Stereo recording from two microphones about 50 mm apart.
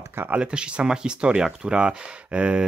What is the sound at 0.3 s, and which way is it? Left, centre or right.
Speech, right.